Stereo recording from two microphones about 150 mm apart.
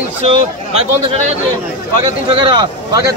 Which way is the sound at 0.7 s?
40° right (ahead or behind).